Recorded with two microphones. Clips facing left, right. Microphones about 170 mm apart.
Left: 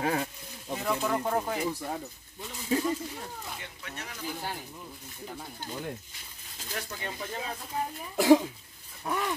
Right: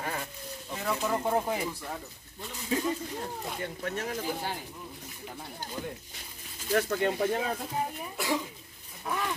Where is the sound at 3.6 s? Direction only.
45° right (ahead or behind).